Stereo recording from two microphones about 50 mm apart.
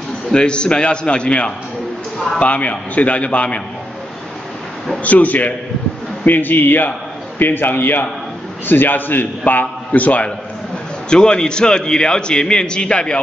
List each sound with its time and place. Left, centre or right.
0.3 s a man's voice: centre
5.0 s a man's voice: left
11.1 s a man's voice: centre